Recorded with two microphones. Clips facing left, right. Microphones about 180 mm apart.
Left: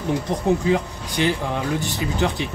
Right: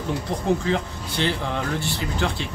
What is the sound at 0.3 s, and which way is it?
Speech, 15° left (ahead or behind).